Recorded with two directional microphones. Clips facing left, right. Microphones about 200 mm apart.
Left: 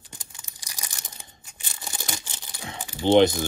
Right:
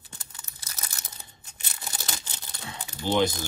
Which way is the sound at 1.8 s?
20° left (ahead or behind).